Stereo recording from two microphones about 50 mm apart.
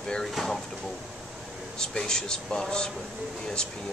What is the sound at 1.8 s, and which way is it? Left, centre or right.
Speech, centre.